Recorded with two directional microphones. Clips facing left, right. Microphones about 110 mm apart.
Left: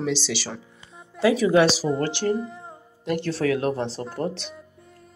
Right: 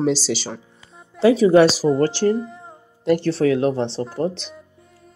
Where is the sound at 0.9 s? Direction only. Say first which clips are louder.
Right 1 dB; centre (ahead or behind).